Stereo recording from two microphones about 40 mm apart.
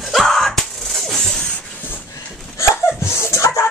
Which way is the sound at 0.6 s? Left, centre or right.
Centre.